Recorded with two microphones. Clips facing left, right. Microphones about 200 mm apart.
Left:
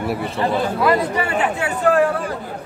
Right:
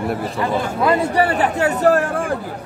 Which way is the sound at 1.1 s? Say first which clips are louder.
Right 3 dB; 35° right (ahead or behind).